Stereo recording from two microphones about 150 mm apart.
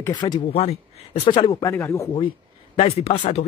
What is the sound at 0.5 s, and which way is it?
Speech, 45° left (ahead or behind).